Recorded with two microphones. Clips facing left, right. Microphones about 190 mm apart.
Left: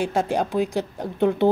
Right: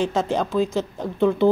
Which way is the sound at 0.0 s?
15° left (ahead or behind).